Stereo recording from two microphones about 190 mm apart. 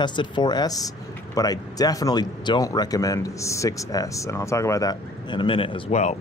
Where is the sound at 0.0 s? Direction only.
25° left (ahead or behind).